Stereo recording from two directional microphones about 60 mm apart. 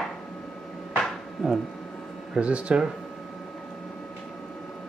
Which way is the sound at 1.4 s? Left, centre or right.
Centre.